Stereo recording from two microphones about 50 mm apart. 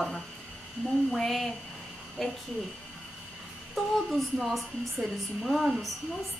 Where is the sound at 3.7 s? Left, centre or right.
Centre.